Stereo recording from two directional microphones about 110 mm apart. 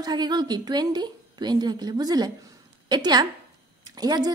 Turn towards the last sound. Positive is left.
turn(degrees=-35)  # may be behind; listen again after turning